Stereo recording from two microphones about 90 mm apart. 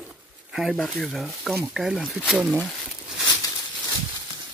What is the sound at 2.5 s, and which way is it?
Speech, 5° left (ahead or behind).